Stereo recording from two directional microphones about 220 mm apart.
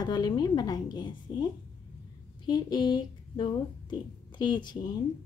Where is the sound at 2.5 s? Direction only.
20° left (ahead or behind).